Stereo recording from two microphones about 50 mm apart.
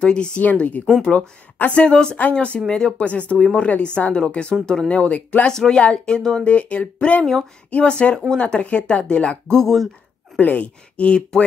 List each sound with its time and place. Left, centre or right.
0.0 s speech: centre
0.4 s speech: left
1.0 s speech: centre
5.5 s speech: centre
6.4 s speech: left; by 9.8 s centre
10.4 s speech: left